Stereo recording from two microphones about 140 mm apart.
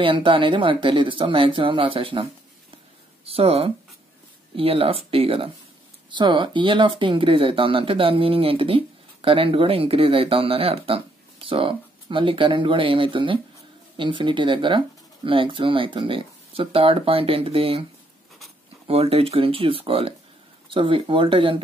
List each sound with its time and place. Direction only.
0.0 s speech: 40° right (ahead or behind)
3.3 s speech: 45° right (ahead or behind)
18.9 s speech: 45° right (ahead or behind)